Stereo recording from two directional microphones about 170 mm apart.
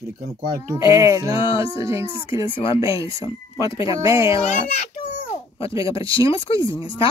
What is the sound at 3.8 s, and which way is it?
Speech, 20° right (ahead or behind).